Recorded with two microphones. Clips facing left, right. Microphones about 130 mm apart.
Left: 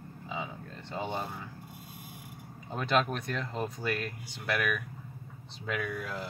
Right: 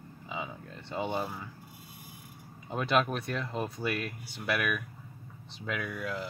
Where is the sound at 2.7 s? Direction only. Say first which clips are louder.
Right 1 dB; 5° right (ahead or behind).